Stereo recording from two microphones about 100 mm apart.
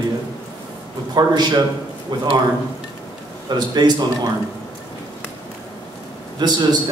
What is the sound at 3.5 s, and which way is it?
Speech, 45° right (ahead or behind).